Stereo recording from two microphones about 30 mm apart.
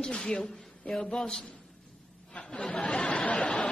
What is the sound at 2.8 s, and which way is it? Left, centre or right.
Chatter, left.